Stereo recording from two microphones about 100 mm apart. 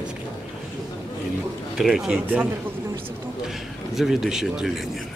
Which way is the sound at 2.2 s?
20° right (ahead or behind).